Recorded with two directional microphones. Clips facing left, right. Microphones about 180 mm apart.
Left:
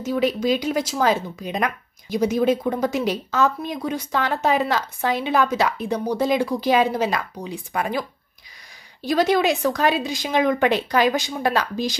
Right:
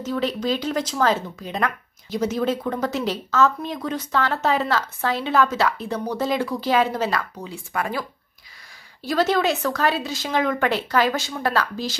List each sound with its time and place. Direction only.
0.0 s speech: 10° left (ahead or behind)